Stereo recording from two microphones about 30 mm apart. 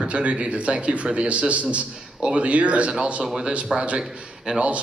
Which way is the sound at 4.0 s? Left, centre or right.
Right.